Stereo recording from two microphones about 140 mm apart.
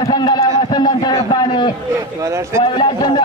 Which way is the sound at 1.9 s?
20° right (ahead or behind).